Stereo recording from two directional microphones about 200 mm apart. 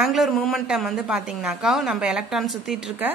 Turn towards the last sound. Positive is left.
turn(degrees=0)  # may be behind; listen again after turning